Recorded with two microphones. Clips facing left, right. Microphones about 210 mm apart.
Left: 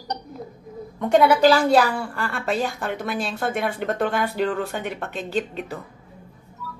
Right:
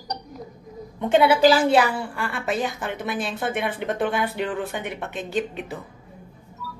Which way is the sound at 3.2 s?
Centre (ahead or behind).